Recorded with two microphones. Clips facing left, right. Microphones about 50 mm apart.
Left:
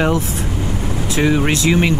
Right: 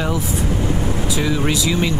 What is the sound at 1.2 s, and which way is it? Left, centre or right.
Speech, left.